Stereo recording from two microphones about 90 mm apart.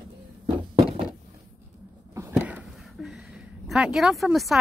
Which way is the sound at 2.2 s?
35° right (ahead or behind).